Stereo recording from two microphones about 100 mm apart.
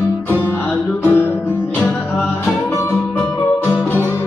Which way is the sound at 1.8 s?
15° left (ahead or behind).